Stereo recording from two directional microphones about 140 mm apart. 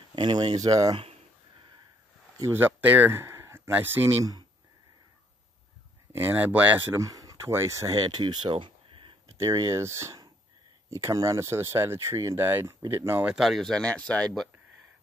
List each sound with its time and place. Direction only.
0.1 s speech: 35° right (ahead or behind)
2.3 s speech: 20° right (ahead or behind)
6.1 s speech: 15° right (ahead or behind)
7.0 s speech: 25° right (ahead or behind)
9.4 s speech: 25° right (ahead or behind)
13.3 s speech: centre (ahead or behind)